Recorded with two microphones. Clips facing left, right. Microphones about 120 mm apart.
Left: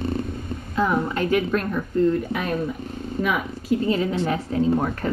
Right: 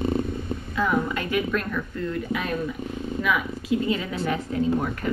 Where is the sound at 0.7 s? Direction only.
30° left (ahead or behind).